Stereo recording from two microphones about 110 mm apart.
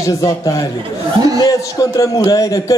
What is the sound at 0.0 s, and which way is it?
A man's voice, 30° left (ahead or behind).